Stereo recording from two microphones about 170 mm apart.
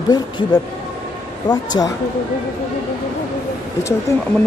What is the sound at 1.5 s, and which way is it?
Speech, 20° left (ahead or behind).